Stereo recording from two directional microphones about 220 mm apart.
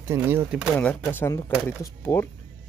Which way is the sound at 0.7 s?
10° left (ahead or behind).